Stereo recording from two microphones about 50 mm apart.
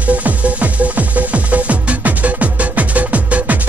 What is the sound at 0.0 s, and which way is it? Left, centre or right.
Music, right.